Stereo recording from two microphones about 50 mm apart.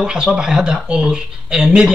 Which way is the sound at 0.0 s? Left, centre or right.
Centre.